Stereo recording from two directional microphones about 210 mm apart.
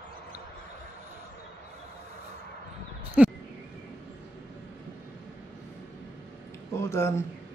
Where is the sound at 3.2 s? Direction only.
5° right (ahead or behind).